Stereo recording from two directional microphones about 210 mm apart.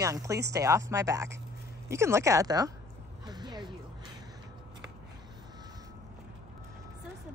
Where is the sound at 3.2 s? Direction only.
20° right (ahead or behind).